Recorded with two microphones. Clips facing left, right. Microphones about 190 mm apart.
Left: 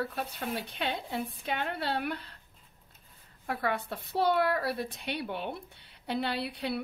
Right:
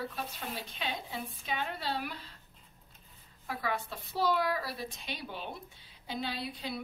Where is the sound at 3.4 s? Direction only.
60° left (ahead or behind).